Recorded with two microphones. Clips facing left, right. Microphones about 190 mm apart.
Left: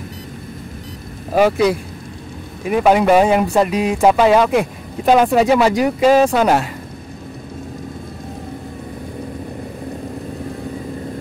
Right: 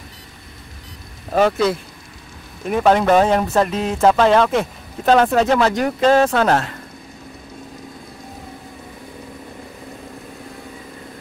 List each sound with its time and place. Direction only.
1.3 s speech: 10° left (ahead or behind)